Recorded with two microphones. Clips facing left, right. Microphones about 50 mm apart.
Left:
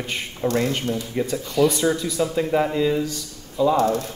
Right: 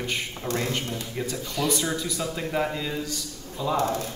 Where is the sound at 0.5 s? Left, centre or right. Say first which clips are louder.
Left 4 dB; centre.